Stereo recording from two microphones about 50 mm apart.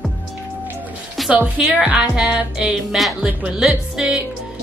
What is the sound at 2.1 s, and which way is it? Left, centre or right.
Music, centre.